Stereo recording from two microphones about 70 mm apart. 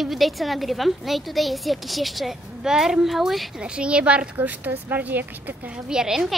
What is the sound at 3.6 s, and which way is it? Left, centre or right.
A woman's voice, centre.